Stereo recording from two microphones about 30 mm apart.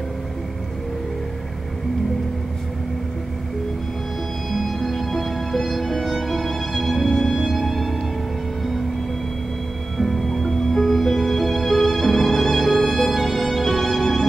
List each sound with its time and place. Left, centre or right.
4.5 s music: centre
9.9 s music: centre